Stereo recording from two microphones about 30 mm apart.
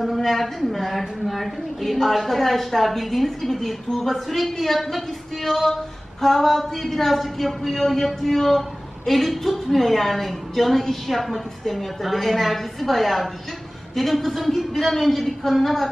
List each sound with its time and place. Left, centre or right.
0.0 s a woman's voice: centre
7.7 s a woman's voice: centre